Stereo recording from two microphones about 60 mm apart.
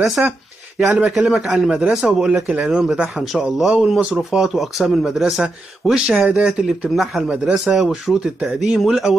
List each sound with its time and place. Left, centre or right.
0.2 s a man's voice: centre
5.2 s a man's voice: centre
7.6 s speech: centre